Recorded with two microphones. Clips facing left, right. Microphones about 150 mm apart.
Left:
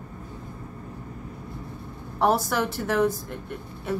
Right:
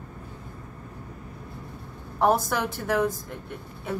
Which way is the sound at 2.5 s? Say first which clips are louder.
Left 1 dB; centre (ahead or behind).